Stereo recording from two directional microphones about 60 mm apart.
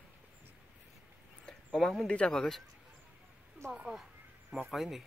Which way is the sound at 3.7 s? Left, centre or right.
Centre.